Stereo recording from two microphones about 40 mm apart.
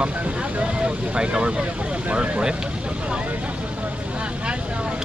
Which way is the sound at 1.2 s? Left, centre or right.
Right.